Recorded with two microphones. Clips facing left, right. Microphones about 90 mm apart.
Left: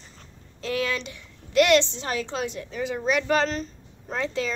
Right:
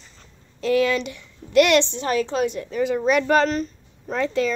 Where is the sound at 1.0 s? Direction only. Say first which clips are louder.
Right 7 dB; 65° right (ahead or behind).